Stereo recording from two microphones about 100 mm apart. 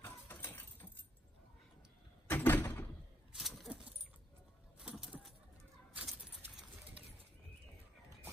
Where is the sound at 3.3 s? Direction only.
5° right (ahead or behind).